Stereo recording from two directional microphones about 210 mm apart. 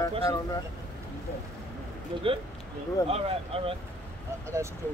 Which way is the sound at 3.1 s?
25° right (ahead or behind).